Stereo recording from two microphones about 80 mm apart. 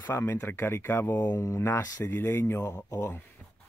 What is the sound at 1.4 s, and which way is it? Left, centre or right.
Speech, left.